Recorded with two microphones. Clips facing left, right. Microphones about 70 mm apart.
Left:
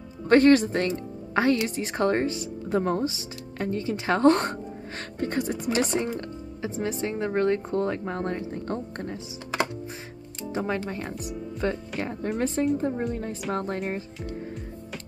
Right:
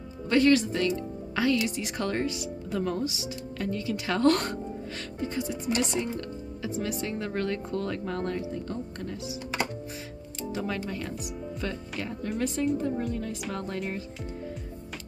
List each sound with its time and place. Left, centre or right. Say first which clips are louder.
0.3 s a woman's voice: left 5 dB; left
5.2 s speech: left 4 dB; left
6.1 s speech: left 1 dB; left
8.5 s speech: left 3 dB; left
10.5 s speech: left 4 dB; left